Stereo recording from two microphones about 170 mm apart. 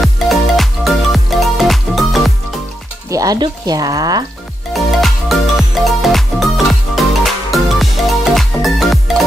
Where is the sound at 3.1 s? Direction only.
20° right (ahead or behind).